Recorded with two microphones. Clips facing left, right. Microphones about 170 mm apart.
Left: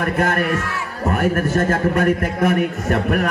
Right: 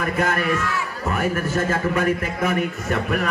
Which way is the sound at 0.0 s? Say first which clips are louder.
Left 3 dB; 55° left (ahead or behind).